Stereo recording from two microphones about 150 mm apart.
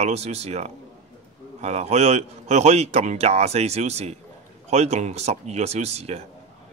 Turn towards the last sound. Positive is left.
turn(degrees=-45)  # may be behind; listen again after turning